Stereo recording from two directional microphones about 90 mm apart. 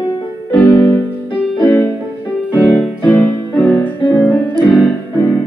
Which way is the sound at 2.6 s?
15° left (ahead or behind).